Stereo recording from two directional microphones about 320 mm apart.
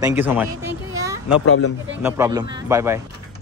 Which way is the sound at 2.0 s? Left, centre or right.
Centre.